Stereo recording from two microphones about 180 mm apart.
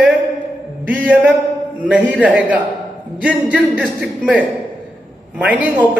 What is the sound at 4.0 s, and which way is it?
Speech, 5° right (ahead or behind).